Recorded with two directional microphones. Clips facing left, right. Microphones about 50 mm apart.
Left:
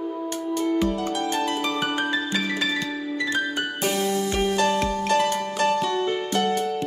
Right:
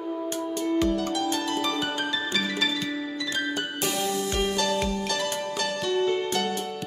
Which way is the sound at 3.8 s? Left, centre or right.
Left.